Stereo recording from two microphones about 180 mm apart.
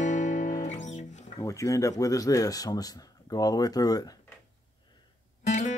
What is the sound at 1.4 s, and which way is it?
Speech, 20° left (ahead or behind).